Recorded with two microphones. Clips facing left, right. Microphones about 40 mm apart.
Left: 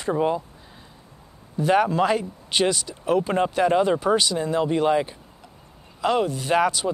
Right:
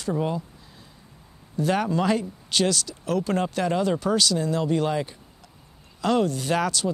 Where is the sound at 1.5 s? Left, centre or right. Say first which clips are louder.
Left 4 dB; centre.